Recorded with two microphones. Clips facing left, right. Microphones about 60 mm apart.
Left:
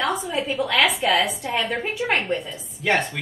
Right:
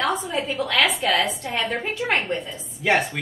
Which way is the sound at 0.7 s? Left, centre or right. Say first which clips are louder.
Left 1 dB; centre.